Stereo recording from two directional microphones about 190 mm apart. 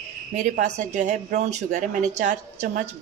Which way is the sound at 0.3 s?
40° right (ahead or behind).